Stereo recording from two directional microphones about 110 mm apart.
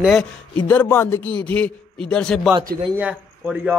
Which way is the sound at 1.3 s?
10° left (ahead or behind).